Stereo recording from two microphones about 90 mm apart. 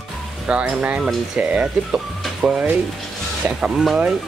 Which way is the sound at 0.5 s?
10° right (ahead or behind).